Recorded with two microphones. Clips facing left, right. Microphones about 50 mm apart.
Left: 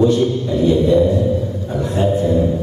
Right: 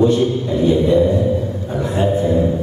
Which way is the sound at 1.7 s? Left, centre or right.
Centre.